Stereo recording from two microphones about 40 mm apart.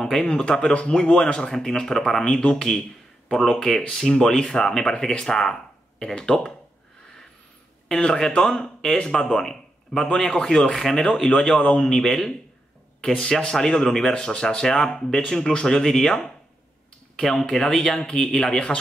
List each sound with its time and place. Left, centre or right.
0.0 s speech: centre
8.0 s a man's voice: centre
10.7 s speech: centre
11.2 s speech: left
11.8 s speech: centre; by 18.8 s left